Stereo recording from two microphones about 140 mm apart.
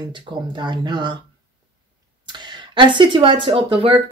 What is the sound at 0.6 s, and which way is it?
Speech, 30° right (ahead or behind).